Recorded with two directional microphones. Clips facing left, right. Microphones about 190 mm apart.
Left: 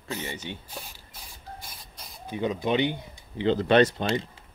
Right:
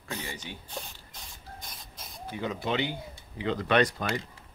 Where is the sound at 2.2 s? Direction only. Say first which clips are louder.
Left 5 dB; 20° left (ahead or behind).